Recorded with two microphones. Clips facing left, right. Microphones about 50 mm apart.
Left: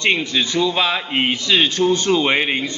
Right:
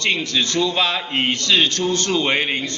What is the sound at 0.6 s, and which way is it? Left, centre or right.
A man's voice, centre.